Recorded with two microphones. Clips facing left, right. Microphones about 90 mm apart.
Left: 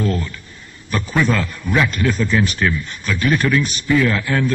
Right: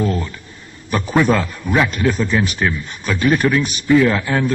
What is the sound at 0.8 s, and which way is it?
A man's voice, 20° right (ahead or behind).